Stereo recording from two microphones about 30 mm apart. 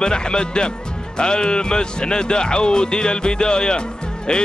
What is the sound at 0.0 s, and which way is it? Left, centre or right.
Speech, left.